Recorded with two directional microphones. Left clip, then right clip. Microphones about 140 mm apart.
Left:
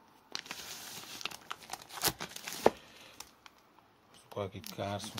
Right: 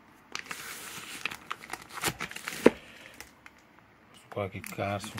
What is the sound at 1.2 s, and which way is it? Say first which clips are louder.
Crumpling: right 6 dB; 45° left (ahead or behind).